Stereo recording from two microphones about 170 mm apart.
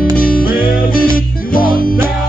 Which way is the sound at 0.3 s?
55° left (ahead or behind).